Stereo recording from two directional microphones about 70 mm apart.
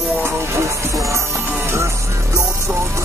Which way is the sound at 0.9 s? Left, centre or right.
Right.